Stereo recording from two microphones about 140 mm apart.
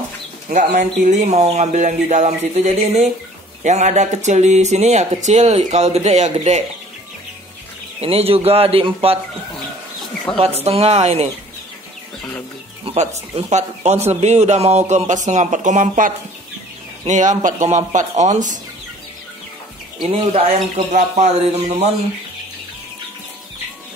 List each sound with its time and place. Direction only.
0.5 s speech: 65° right (ahead or behind)
8.0 s speech: 45° right (ahead or behind)
10.3 s speech: 5° left (ahead or behind)
10.6 s speech: 50° right (ahead or behind)
12.8 s speech: 50° right (ahead or behind)
17.1 s speech: 65° right (ahead or behind)
20.0 s speech: 40° right (ahead or behind)
20.5 s speech: 55° right (ahead or behind)